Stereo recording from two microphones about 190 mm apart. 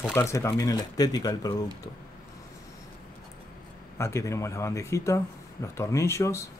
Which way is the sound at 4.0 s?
15° left (ahead or behind).